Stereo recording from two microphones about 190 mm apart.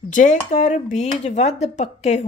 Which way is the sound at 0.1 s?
40° left (ahead or behind).